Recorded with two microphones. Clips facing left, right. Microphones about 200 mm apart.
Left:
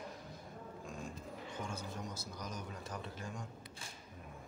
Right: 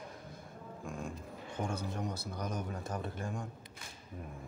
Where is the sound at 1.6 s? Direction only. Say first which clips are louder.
Right 8 dB; 60° right (ahead or behind).